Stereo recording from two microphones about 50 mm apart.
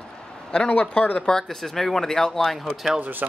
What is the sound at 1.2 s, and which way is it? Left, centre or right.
Speech, centre.